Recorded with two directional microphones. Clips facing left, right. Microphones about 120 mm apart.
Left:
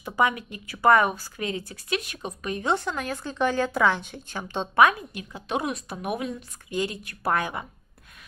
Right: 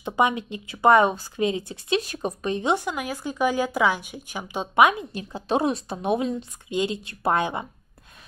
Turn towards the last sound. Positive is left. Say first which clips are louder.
# right 3 dB
turn(degrees=-25)  # may be behind; listen again after turning